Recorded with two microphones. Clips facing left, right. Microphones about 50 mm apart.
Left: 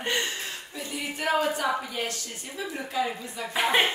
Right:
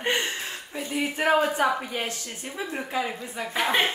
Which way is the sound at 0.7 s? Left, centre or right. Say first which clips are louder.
Right 7 dB; right.